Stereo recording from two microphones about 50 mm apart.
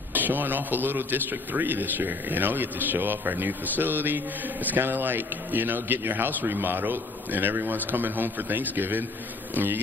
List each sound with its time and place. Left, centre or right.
0.1 s a man's voice: right